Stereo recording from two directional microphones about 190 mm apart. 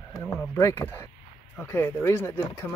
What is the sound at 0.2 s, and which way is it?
Speech, 10° left (ahead or behind).